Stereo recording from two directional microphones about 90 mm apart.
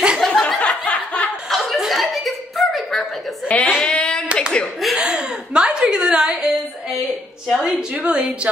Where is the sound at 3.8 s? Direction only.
10° left (ahead or behind).